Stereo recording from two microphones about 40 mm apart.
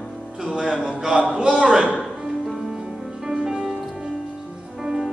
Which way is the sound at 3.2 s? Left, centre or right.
Centre.